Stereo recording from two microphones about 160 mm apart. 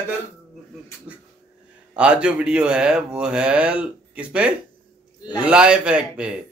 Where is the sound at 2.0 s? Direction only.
5° right (ahead or behind).